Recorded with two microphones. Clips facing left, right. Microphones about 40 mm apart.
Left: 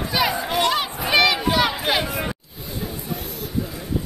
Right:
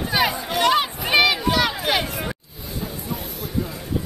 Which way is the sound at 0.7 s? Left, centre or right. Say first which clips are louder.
Right 2 dB; centre.